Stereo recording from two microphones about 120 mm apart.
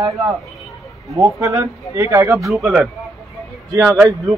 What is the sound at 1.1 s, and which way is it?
Speech, 25° right (ahead or behind).